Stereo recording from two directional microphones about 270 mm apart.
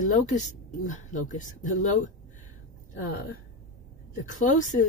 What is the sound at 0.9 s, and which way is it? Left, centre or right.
Speech, left.